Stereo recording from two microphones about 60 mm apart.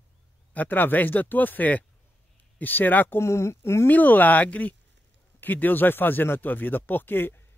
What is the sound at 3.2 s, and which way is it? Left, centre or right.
Speech, left.